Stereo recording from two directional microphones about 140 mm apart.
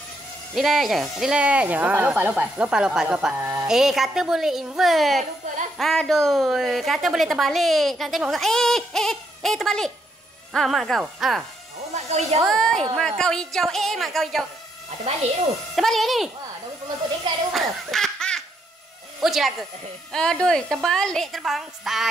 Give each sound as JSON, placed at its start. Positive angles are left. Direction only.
{"t": 0.6, "sound": "speech", "side_deg": 0}
{"t": 3.6, "sound": "a woman's voice", "side_deg": -5}
{"t": 11.9, "sound": "a sound", "side_deg": -50}
{"t": 12.4, "sound": "a woman's voice", "side_deg": 5}
{"t": 15.7, "sound": "a woman's voice", "side_deg": 0}
{"t": 17.5, "sound": "laughter", "side_deg": 0}
{"t": 19.2, "sound": "a woman's voice", "side_deg": 0}